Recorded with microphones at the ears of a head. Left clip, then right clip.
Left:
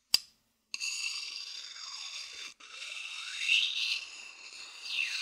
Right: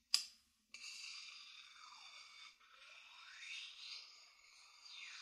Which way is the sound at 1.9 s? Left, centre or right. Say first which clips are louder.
Left 16 dB; left.